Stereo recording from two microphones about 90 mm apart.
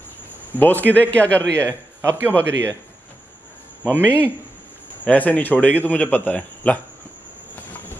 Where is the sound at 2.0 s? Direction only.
25° right (ahead or behind).